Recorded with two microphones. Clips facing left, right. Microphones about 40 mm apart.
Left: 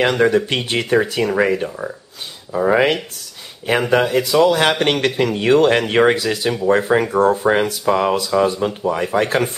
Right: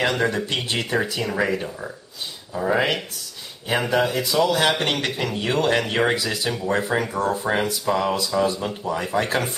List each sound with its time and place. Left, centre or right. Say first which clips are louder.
0.0 s speech: left 7 dB; left
0.5 s speech: left 6 dB; left
1.3 s speech: left 6 dB; left
3.9 s speech: left 5 dB; left
4.3 s speech: left 8 dB; centre
4.6 s speech: left 5 dB; left